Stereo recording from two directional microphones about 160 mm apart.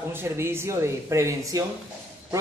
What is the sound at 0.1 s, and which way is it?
Speech, 15° right (ahead or behind).